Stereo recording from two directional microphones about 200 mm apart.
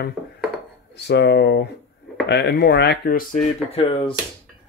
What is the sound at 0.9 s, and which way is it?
Speech, 55° left (ahead or behind).